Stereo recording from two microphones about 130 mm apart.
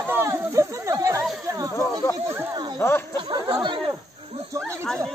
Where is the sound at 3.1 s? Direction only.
35° right (ahead or behind).